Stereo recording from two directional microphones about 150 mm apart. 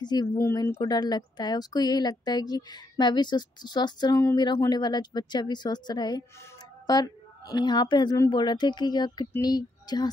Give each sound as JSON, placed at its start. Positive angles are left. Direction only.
{"t": 0.0, "sound": "a woman's voice", "side_deg": 30}